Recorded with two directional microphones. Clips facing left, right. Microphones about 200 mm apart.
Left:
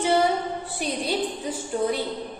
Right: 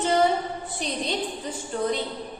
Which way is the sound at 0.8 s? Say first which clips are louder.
Left 3 dB; 10° left (ahead or behind).